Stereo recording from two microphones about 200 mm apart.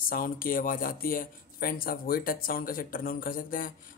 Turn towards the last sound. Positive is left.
turn(degrees=45)  # may be behind; listen again after turning